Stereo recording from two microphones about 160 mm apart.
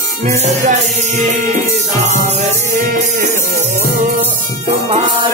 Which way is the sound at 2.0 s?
45° right (ahead or behind).